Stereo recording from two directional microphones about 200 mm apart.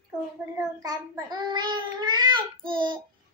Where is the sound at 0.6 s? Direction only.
20° right (ahead or behind).